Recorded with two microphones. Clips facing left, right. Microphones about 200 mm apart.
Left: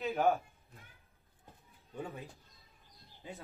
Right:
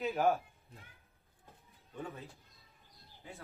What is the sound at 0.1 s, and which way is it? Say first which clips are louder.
Speech: left 1 dB; centre (ahead or behind).